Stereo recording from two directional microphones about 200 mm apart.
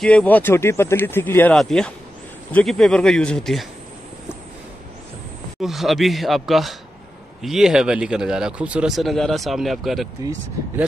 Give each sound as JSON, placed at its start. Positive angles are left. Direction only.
{"t": 0.0, "sound": "speech", "side_deg": 5}
{"t": 5.6, "sound": "speech", "side_deg": 0}